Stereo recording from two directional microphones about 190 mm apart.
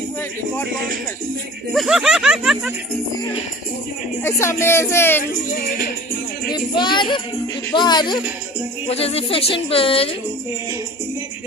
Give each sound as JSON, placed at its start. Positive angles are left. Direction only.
{"t": 1.7, "sound": "speech", "side_deg": 0}
{"t": 4.2, "sound": "speech", "side_deg": 15}
{"t": 6.5, "sound": "speech", "side_deg": 25}